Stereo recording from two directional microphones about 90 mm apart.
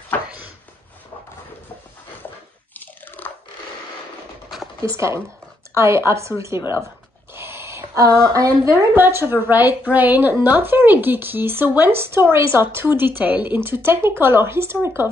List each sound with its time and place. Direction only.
2.7 s biting: 20° left (ahead or behind)
4.8 s a woman's voice: 35° right (ahead or behind)
7.3 s a sound: 30° right (ahead or behind)
8.3 s a woman's voice: 40° right (ahead or behind)
8.9 s a woman's voice: 25° right (ahead or behind)